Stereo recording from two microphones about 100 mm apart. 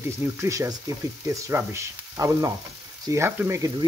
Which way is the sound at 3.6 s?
40° right (ahead or behind).